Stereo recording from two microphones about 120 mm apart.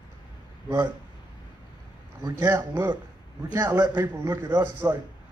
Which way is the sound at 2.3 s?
20° right (ahead or behind).